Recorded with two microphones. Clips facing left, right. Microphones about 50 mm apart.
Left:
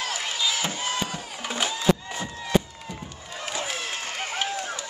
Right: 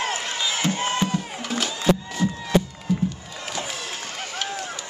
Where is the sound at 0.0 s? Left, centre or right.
Right.